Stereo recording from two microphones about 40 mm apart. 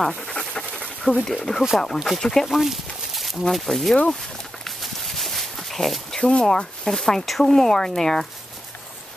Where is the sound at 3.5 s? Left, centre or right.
Centre.